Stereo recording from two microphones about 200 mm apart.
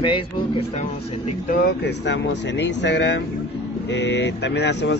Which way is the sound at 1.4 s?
60° left (ahead or behind).